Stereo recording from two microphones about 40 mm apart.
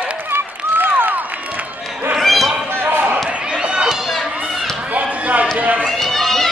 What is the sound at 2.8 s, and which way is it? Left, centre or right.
Basketball bounce, right.